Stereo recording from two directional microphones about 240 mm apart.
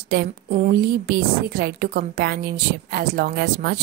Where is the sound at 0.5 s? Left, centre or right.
Right.